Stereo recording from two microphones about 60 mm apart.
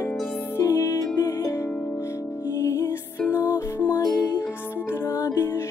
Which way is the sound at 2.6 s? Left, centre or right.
Left.